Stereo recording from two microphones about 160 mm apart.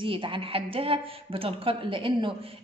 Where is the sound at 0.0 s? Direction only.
30° right (ahead or behind).